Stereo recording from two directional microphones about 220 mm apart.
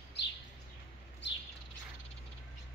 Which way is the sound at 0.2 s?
50° left (ahead or behind).